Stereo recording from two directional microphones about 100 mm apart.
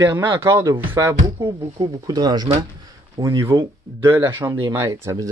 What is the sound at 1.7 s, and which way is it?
Speech, 40° right (ahead or behind).